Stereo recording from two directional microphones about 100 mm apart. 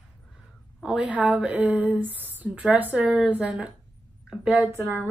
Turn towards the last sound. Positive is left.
turn(degrees=-25)  # may be behind; listen again after turning